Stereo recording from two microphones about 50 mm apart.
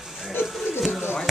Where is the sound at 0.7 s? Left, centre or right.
Centre.